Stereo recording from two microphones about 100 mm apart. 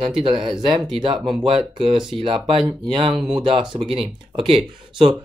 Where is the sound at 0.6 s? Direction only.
50° right (ahead or behind).